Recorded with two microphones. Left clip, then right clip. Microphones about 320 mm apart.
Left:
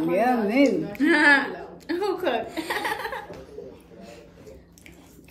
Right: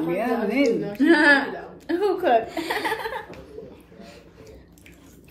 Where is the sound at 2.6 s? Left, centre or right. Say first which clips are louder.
Right 2 dB; centre.